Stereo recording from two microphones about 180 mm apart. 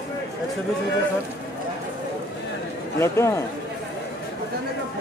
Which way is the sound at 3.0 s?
15° left (ahead or behind).